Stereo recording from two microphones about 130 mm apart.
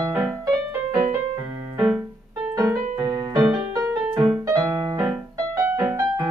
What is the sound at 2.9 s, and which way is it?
Music, 35° right (ahead or behind).